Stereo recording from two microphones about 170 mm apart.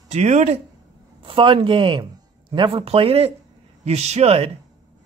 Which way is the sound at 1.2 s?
30° right (ahead or behind).